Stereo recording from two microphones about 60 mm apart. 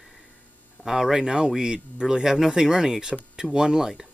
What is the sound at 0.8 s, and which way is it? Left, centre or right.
Speech, centre.